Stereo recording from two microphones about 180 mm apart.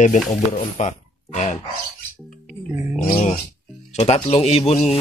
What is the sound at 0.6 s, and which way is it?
Speech, 40° left (ahead or behind).